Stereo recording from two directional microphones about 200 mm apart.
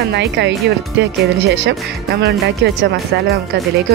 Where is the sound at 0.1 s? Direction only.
60° right (ahead or behind).